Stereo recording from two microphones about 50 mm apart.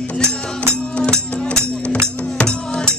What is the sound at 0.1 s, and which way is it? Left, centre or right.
Music, left.